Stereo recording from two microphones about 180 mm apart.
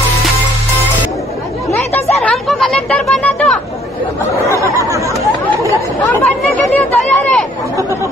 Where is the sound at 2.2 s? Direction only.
Centre (ahead or behind).